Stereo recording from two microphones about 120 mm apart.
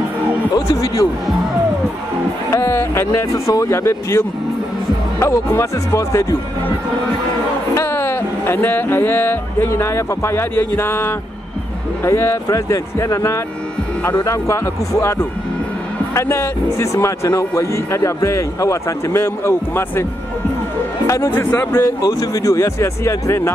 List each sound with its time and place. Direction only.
0.6 s speech: 30° left (ahead or behind)
2.5 s speech: 20° left (ahead or behind)
7.7 s speech: 20° left (ahead or behind)
21.1 s speech: 20° left (ahead or behind)
22.0 s speech: 30° left (ahead or behind)